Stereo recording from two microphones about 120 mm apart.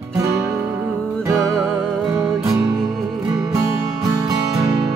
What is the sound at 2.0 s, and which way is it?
Music, 25° right (ahead or behind).